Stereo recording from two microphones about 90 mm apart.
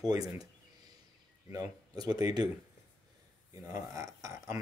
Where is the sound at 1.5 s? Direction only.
45° right (ahead or behind).